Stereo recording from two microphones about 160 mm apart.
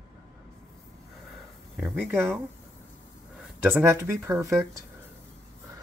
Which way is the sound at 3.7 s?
15° right (ahead or behind).